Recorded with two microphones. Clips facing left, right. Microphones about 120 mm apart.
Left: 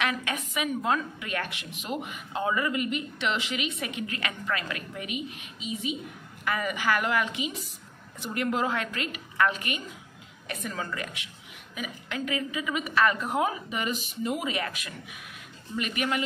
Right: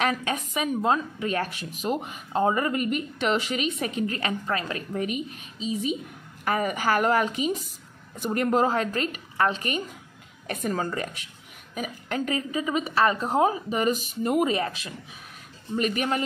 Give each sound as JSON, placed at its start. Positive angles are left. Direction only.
{"t": 0.0, "sound": "a woman's voice", "side_deg": -35}
{"t": 14.5, "sound": "a woman's voice", "side_deg": -30}